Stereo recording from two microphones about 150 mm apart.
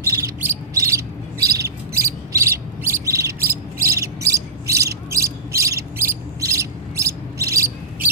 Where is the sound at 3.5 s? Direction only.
20° right (ahead or behind).